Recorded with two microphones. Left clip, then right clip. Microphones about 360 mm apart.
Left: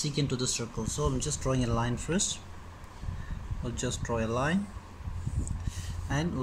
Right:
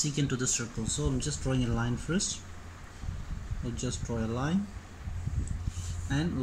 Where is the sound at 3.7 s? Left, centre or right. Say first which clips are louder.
Left 4 dB; centre.